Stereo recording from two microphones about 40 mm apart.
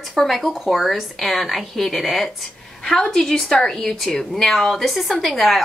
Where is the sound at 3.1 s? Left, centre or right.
Centre.